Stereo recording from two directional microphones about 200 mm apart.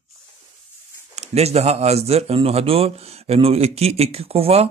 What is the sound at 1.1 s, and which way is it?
Speech, 30° right (ahead or behind).